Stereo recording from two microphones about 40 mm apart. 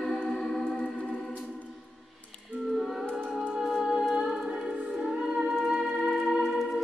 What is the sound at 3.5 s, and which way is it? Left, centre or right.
Music, centre.